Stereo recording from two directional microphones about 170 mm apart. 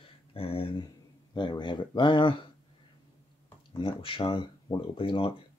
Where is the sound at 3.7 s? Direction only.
30° left (ahead or behind).